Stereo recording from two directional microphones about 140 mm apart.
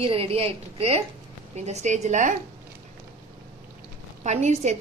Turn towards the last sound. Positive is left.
turn(degrees=-55)  # may be behind; listen again after turning